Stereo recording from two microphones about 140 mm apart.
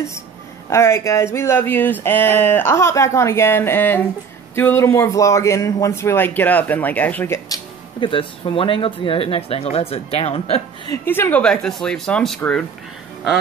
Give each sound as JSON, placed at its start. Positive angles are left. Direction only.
{"t": 0.7, "sound": "speech", "side_deg": 20}
{"t": 8.1, "sound": "speech", "side_deg": 40}
{"t": 11.1, "sound": "speech", "side_deg": 15}